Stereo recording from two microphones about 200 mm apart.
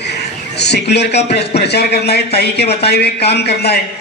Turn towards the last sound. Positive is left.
turn(degrees=55)  # may be behind; listen again after turning